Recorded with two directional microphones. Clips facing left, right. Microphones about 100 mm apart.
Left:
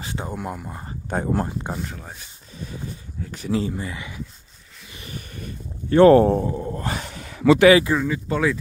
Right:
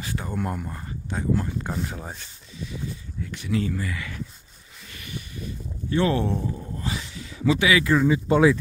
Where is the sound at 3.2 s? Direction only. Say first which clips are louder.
Left 3 dB; 40° left (ahead or behind).